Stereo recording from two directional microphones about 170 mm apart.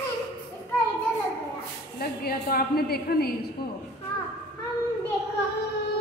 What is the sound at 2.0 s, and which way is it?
A woman's voice, 60° left (ahead or behind).